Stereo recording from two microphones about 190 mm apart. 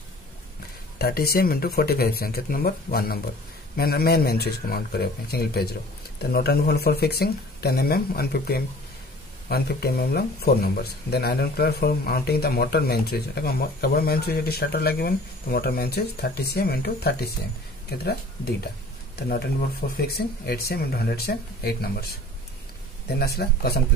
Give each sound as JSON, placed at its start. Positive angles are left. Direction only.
{"t": 0.9, "sound": "speech", "side_deg": 55}
{"t": 19.2, "sound": "speech", "side_deg": 50}